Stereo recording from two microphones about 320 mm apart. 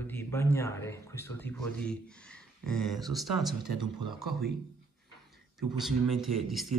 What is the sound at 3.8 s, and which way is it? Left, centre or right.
Speech, centre.